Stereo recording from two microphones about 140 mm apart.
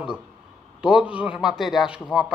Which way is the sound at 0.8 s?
5° right (ahead or behind).